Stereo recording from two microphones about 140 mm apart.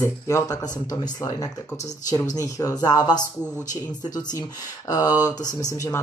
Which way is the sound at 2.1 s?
25° left (ahead or behind).